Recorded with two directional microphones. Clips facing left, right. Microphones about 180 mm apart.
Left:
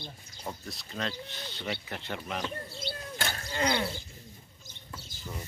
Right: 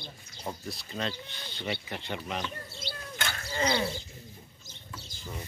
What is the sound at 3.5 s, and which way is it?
Wild animals, 5° right (ahead or behind).